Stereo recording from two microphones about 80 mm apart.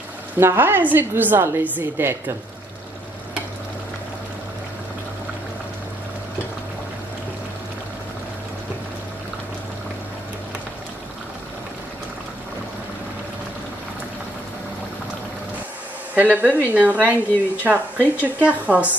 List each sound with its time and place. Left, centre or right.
0.4 s a woman's voice: right
16.2 s a woman's voice: centre